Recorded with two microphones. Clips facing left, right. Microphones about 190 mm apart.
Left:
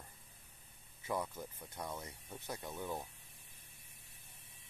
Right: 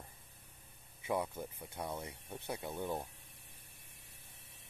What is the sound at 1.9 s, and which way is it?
Speech, 25° right (ahead or behind).